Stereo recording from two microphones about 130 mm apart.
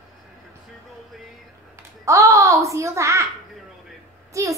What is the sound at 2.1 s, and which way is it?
A child's voice, 25° right (ahead or behind).